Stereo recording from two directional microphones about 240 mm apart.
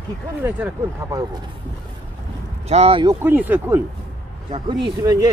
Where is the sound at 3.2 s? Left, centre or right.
Centre.